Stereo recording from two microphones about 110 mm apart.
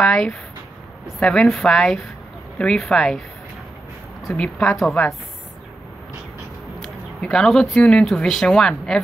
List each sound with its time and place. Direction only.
0.0 s a woman's voice: 5° left (ahead or behind)
4.4 s a woman's voice: 5° left (ahead or behind)
6.8 s speech: 5° left (ahead or behind)